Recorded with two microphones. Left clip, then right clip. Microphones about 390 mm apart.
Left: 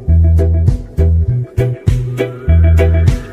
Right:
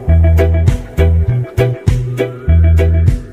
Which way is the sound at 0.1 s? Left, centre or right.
Right.